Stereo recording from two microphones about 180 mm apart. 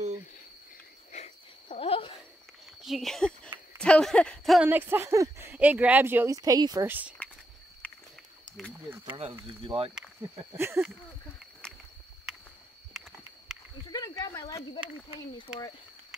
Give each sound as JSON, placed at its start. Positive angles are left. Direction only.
{"t": 1.1, "sound": "cricket", "side_deg": 40}
{"t": 2.8, "sound": "speech", "side_deg": 0}
{"t": 4.6, "sound": "speech", "side_deg": -10}
{"t": 6.9, "sound": "speech", "side_deg": -10}
{"t": 7.8, "sound": "a sound", "side_deg": 10}
{"t": 9.0, "sound": "speech", "side_deg": -25}
{"t": 10.4, "sound": "speech", "side_deg": -15}
{"t": 11.6, "sound": "a sound", "side_deg": 5}
{"t": 13.8, "sound": "snake", "side_deg": 25}
{"t": 15.1, "sound": "speech", "side_deg": 25}